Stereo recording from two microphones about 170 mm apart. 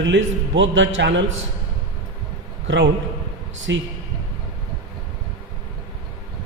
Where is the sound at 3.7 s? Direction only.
90° right.